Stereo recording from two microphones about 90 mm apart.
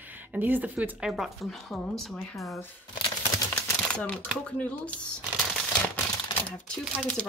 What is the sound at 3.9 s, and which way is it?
Speech, 15° left (ahead or behind).